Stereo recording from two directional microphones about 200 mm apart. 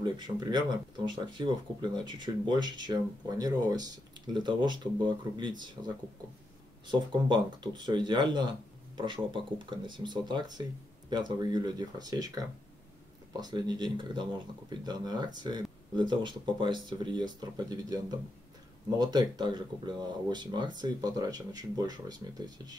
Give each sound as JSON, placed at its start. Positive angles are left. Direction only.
{"t": 0.0, "sound": "speech", "side_deg": -20}